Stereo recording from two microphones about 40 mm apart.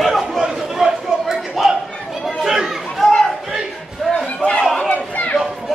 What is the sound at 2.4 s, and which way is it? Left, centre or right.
Chatter, centre.